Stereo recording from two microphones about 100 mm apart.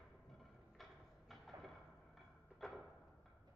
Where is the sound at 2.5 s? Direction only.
Centre (ahead or behind).